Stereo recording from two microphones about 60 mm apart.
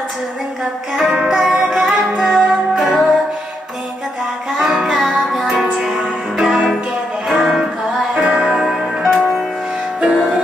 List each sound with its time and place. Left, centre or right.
0.9 s music: centre
4.6 s music: centre